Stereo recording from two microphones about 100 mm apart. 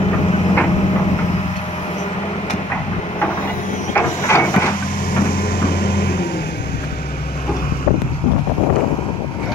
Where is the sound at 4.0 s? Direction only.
25° left (ahead or behind).